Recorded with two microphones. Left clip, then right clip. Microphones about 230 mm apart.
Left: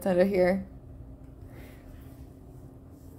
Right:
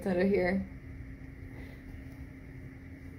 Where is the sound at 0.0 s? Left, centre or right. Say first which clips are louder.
Left 5 dB; left.